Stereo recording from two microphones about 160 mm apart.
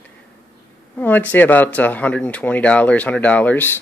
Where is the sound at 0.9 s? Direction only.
10° left (ahead or behind).